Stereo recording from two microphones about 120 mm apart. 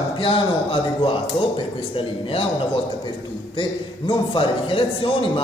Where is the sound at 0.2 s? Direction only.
45° left (ahead or behind).